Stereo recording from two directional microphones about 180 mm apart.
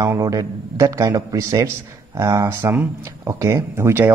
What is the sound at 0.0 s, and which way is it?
A man's voice, 20° right (ahead or behind).